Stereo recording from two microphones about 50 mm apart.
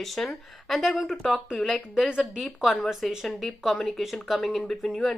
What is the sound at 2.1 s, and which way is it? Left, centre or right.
Speech, centre.